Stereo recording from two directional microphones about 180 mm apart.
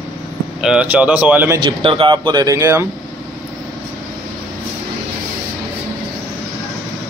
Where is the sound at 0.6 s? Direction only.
5° right (ahead or behind).